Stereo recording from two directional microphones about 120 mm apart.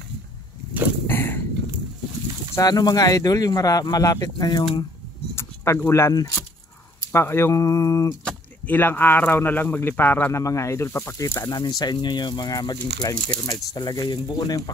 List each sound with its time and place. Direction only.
1.0 s a sound: 20° left (ahead or behind)
2.5 s speech: 35° left (ahead or behind)
5.3 s keys jangling: 20° left (ahead or behind)
7.1 s speech: 20° left (ahead or behind)
8.3 s speech: 15° left (ahead or behind); by 14.6 s 35° left (ahead or behind)